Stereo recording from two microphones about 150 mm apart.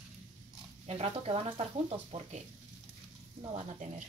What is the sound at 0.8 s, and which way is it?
Speech, 40° right (ahead or behind).